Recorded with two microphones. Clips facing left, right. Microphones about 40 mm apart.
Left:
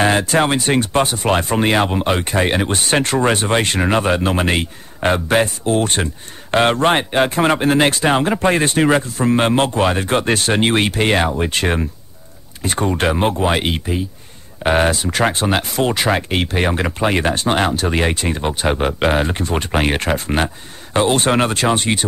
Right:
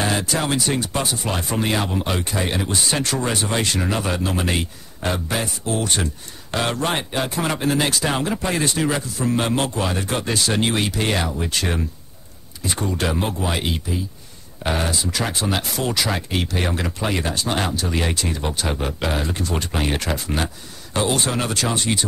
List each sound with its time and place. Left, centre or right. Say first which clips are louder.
0.0 s speech: left 7 dB; left